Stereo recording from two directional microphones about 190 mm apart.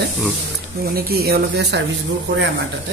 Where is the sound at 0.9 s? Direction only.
55° right (ahead or behind).